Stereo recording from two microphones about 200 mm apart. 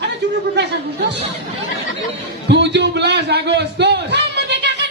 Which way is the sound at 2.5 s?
60° right (ahead or behind).